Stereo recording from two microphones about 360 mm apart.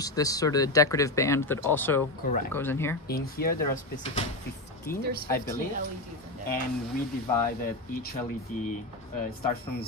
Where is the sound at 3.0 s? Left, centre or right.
Left.